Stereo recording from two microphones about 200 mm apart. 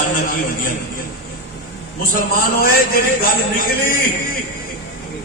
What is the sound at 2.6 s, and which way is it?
A man's voice, 45° left (ahead or behind).